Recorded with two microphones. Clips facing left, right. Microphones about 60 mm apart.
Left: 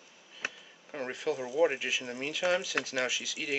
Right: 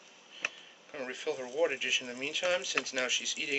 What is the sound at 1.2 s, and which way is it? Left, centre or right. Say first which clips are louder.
Speech: left 4 dB; centre.